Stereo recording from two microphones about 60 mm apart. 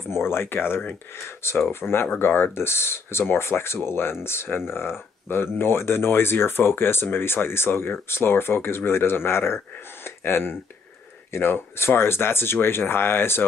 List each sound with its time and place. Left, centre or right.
0.1 s speech: left